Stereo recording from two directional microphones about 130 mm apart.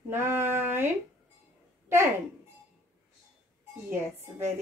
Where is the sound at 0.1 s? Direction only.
20° right (ahead or behind).